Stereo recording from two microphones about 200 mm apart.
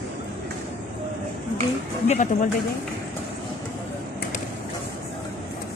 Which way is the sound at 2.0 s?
35° left (ahead or behind).